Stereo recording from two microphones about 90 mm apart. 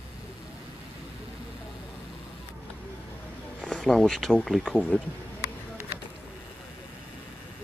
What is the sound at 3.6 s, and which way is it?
Speech, 5° left (ahead or behind).